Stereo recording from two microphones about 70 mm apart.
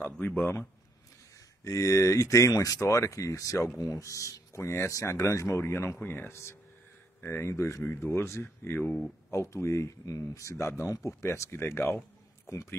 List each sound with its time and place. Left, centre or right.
0.4 s speech: left
1.6 s speech: left
9.3 s speech: left
12.4 s speech: left